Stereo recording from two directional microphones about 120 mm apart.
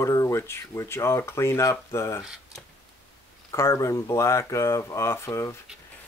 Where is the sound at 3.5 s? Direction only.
25° left (ahead or behind).